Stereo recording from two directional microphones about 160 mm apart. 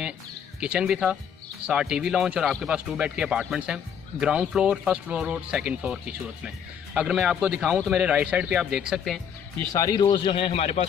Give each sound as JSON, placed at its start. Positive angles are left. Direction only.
{"t": 0.6, "sound": "speech", "side_deg": -5}
{"t": 9.7, "sound": "speech", "side_deg": 25}
{"t": 10.0, "sound": "speech", "side_deg": 35}